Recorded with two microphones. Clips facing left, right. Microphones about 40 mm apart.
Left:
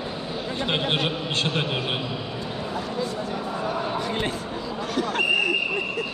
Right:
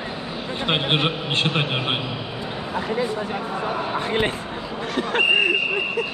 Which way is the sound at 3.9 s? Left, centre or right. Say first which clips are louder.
Right 4 dB; right.